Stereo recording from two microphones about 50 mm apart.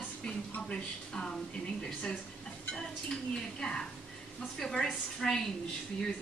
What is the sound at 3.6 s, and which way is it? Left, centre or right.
A woman's voice, centre.